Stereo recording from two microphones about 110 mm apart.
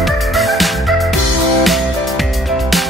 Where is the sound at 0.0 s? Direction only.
Centre (ahead or behind).